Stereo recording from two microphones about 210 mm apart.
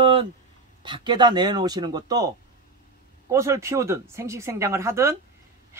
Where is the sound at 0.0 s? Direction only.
25° right (ahead or behind).